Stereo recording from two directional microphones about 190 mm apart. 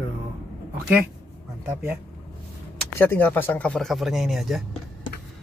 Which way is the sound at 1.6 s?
10° right (ahead or behind).